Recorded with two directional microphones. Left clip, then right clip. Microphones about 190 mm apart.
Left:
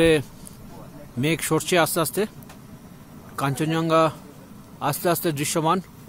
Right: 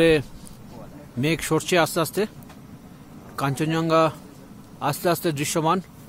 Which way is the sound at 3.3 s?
Centre (ahead or behind).